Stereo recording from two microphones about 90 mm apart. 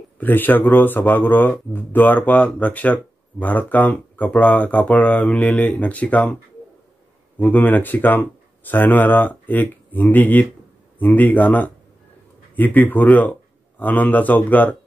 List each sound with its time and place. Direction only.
0.2 s speech: 20° left (ahead or behind)
7.4 s a man's voice: 20° left (ahead or behind)